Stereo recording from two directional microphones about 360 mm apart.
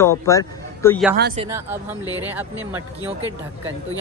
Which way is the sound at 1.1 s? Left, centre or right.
Right.